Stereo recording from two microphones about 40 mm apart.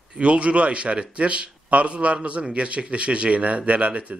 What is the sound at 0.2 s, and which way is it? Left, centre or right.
Speech, right.